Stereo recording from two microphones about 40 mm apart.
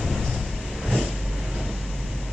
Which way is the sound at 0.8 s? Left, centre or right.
Centre.